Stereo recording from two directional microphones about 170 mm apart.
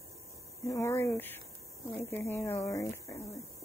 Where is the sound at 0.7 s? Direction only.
15° left (ahead or behind).